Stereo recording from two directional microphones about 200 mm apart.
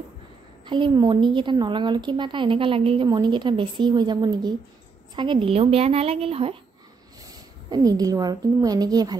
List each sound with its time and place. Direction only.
0.7 s a woman's voice: 25° right (ahead or behind)
7.2 s a woman's voice: 20° right (ahead or behind)